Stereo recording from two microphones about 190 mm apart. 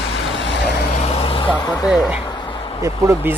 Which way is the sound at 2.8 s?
15° right (ahead or behind).